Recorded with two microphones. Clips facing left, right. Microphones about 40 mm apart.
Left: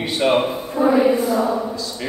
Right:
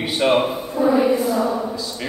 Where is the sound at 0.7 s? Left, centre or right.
Left.